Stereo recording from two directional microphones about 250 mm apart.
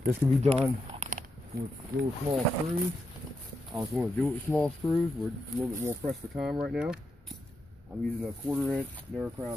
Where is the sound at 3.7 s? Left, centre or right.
Centre.